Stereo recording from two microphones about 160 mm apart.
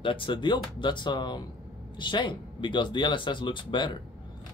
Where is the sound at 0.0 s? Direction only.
30° left (ahead or behind).